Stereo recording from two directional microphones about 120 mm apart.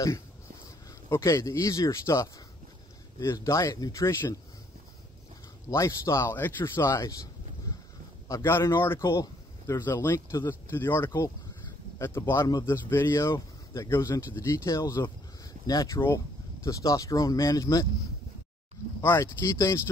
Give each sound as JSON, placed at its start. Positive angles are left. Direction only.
{"t": 0.7, "sound": "speech", "side_deg": 25}
{"t": 5.7, "sound": "speech", "side_deg": 25}
{"t": 8.3, "sound": "speech", "side_deg": 20}
{"t": 12.4, "sound": "speech", "side_deg": 30}
{"t": 12.7, "sound": "speech", "side_deg": 20}
{"t": 18.9, "sound": "speech", "side_deg": 20}